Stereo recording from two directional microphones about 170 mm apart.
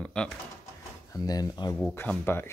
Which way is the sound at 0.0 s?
5° left (ahead or behind).